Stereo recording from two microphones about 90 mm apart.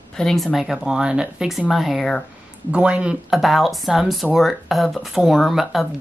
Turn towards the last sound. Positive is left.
turn(degrees=0)  # may be behind; listen again after turning